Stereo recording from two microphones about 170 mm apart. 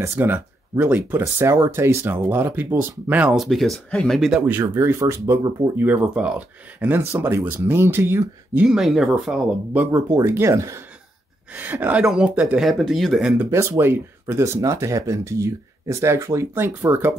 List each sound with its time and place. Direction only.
0.0 s speech: 10° right (ahead or behind)
8.6 s speech: 5° right (ahead or behind)